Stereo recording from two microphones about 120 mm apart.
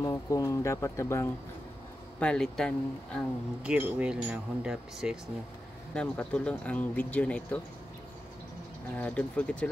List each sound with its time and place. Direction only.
0.0 s speech: 25° left (ahead or behind)
2.1 s speech: 5° left (ahead or behind)
3.6 s speech: 10° right (ahead or behind)
5.9 s speech: 10° left (ahead or behind)
8.9 s speech: 10° left (ahead or behind)